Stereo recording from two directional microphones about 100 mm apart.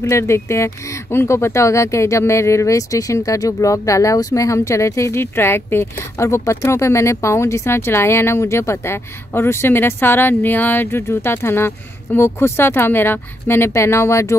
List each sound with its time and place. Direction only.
0.0 s speech: 30° left (ahead or behind)